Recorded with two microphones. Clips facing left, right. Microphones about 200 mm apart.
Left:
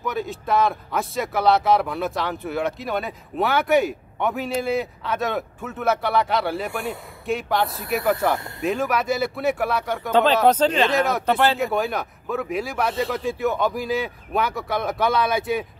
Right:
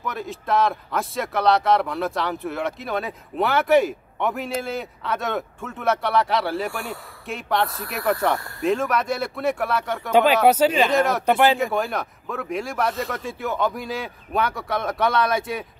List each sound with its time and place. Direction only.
0.0 s a man's voice: centre (ahead or behind)
10.1 s speech: 10° right (ahead or behind)
10.9 s a man's voice: centre (ahead or behind)
11.2 s speech: 15° right (ahead or behind)
11.6 s a man's voice: centre (ahead or behind)